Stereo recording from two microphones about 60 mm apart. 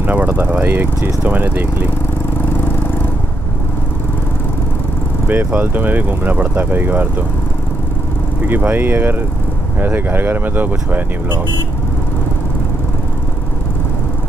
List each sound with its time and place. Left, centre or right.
0.0 s vehicle: right
1.3 s speech: right
5.3 s speech: right
8.5 s speech: right